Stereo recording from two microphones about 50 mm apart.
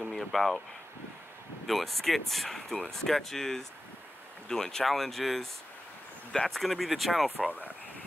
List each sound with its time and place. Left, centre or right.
0.0 s speech: centre
1.7 s speech: centre
6.5 s speech: centre
7.4 s speech: right